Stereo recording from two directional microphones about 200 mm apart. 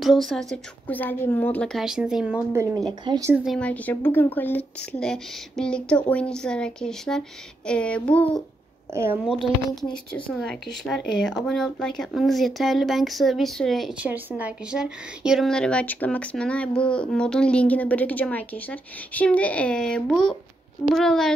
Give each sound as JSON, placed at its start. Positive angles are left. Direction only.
{"t": 0.0, "sound": "speech", "side_deg": 0}
{"t": 3.4, "sound": "a woman's voice", "side_deg": 5}
{"t": 8.9, "sound": "speech", "side_deg": -10}
{"t": 9.4, "sound": "speech", "side_deg": 20}
{"t": 10.3, "sound": "speech", "side_deg": 0}